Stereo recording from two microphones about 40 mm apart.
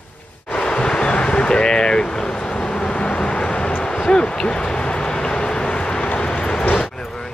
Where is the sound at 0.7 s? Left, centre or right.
Left.